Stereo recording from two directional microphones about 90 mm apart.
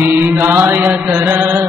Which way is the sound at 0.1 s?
20° right (ahead or behind).